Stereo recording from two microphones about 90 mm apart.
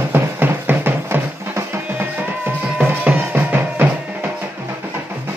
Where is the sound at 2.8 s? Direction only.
20° right (ahead or behind).